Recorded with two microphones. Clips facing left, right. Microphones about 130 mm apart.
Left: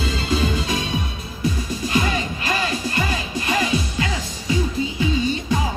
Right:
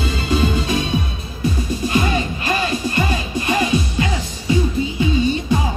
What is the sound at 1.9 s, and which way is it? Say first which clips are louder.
Music: right 2 dB; 25° right (ahead or behind).